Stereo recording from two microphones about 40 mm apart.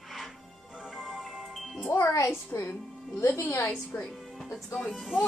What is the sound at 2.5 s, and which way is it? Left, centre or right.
A woman's voice, left.